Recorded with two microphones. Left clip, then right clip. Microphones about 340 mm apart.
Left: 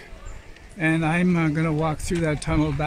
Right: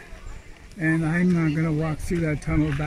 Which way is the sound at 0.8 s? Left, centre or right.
Centre.